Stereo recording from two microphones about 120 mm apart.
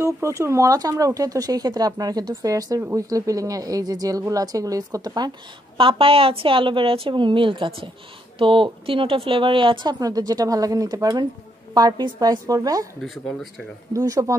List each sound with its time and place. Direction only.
0.0 s speech: 25° right (ahead or behind)
5.8 s a woman's voice: 50° right (ahead or behind)
9.9 s a woman's voice: 30° right (ahead or behind)
13.0 s speech: centre (ahead or behind)
13.9 s speech: 25° right (ahead or behind)